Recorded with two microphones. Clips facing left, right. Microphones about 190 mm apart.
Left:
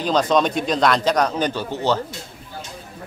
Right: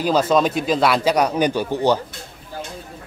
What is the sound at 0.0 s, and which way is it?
A man's voice, 5° right (ahead or behind).